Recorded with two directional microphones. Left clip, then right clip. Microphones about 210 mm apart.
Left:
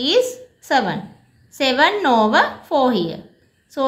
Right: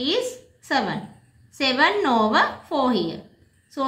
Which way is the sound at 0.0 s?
35° left (ahead or behind).